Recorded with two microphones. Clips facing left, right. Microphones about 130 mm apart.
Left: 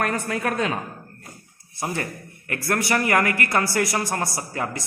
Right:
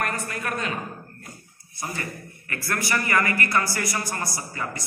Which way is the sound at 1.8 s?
65° left (ahead or behind).